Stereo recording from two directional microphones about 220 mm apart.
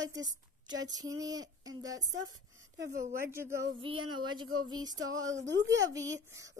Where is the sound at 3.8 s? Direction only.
20° right (ahead or behind).